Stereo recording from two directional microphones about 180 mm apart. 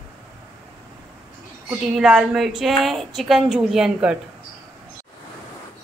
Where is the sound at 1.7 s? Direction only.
5° right (ahead or behind).